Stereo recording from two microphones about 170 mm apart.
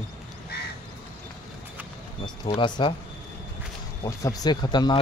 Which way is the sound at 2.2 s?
30° left (ahead or behind).